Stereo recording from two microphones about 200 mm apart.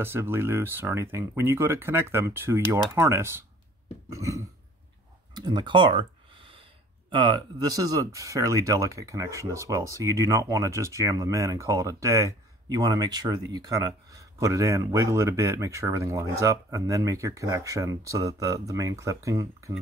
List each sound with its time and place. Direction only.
0.0 s speech: 10° right (ahead or behind)
5.3 s a sound: 20° right (ahead or behind)
7.1 s speech: 25° right (ahead or behind)